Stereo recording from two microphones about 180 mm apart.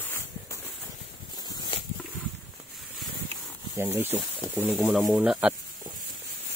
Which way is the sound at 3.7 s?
10° right (ahead or behind).